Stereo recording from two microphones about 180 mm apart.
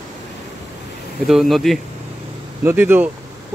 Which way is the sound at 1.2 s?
Centre (ahead or behind).